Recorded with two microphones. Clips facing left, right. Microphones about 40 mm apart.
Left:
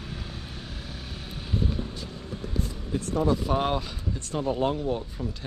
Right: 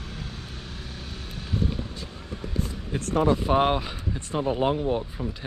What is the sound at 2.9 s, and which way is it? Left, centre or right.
Speech, right.